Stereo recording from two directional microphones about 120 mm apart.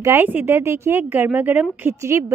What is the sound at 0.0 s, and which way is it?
A woman's voice, 20° right (ahead or behind).